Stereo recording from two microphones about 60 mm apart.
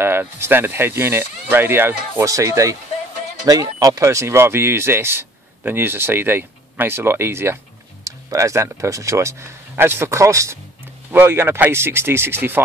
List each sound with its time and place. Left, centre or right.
0.0 s speech: right
2.1 s speech: right
3.4 s speech: right
8.0 s speech: right
9.8 s speech: right
11.1 s speech: right